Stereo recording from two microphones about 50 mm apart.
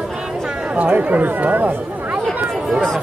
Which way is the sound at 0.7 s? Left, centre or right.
Right.